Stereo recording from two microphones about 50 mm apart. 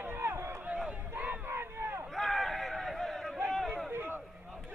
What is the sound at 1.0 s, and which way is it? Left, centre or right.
Crowd, right.